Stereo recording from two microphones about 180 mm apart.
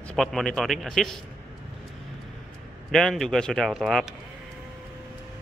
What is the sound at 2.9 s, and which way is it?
A man's voice, centre (ahead or behind).